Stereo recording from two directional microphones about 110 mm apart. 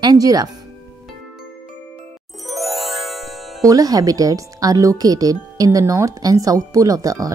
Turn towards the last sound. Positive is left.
turn(degrees=-30)  # may be behind; listen again after turning